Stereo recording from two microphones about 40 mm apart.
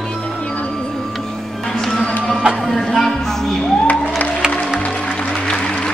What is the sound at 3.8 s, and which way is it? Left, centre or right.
Music, left.